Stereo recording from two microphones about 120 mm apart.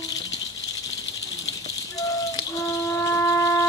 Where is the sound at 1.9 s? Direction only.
30° left (ahead or behind).